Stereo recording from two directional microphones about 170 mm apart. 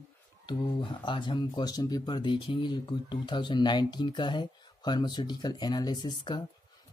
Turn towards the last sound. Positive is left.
turn(degrees=25)  # may be behind; listen again after turning